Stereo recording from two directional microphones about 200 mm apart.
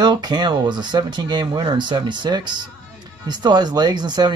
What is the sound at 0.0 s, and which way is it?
Speech, 20° right (ahead or behind).